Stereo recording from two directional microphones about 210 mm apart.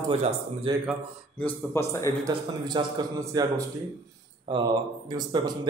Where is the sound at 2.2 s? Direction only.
15° right (ahead or behind).